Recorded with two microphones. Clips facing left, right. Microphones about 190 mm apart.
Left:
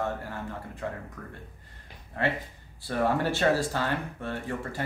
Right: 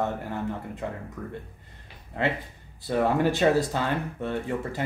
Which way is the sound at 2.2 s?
20° right (ahead or behind).